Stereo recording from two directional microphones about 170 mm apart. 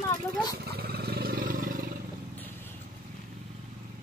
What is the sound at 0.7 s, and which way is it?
Vehicle, 65° right (ahead or behind).